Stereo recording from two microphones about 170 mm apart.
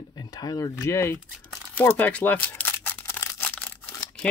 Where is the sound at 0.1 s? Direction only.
20° left (ahead or behind).